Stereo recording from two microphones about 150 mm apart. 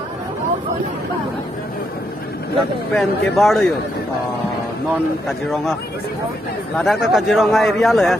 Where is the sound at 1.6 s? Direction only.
80° left.